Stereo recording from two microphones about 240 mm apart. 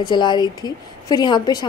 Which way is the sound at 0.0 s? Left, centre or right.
Centre.